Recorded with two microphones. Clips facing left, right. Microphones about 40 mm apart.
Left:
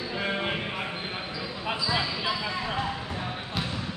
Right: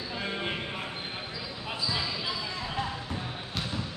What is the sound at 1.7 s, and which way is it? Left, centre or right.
Basketball bounce, left.